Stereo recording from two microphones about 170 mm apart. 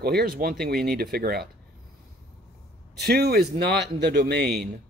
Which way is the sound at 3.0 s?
70° right (ahead or behind).